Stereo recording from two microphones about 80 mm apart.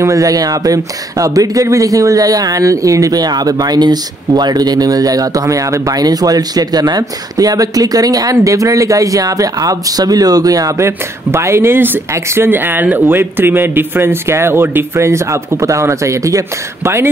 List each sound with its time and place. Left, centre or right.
0.0 s speech: right
10.9 s a man's voice: right